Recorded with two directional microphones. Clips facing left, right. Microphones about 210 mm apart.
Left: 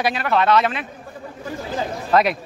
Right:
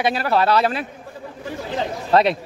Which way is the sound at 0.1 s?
35° right (ahead or behind).